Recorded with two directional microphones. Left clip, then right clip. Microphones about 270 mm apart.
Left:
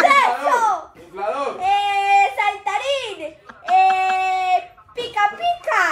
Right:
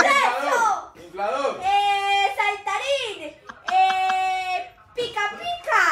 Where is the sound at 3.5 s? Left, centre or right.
Centre.